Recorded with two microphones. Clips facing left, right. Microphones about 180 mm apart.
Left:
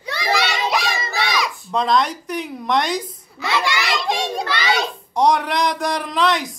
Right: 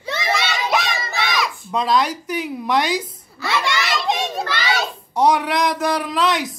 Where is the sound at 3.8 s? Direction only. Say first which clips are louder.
Even; centre (ahead or behind).